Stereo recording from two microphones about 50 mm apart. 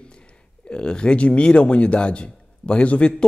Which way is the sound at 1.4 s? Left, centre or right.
Left.